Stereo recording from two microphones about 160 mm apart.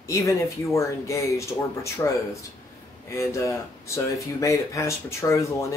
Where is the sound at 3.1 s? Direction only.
20° left (ahead or behind).